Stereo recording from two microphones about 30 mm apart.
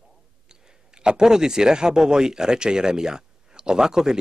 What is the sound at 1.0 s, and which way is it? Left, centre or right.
Speech, right.